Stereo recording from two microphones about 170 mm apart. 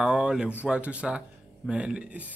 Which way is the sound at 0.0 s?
5° right (ahead or behind).